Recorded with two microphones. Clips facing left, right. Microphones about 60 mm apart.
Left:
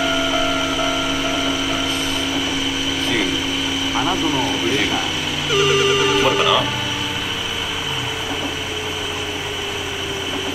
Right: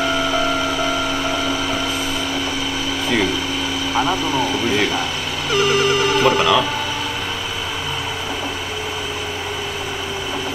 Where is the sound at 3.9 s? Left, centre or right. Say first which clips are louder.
Right 1 dB; right.